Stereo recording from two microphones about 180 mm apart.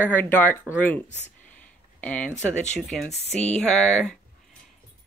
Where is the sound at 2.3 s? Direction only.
40° left (ahead or behind).